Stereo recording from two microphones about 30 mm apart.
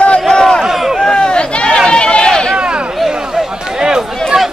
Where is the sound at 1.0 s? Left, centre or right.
Left.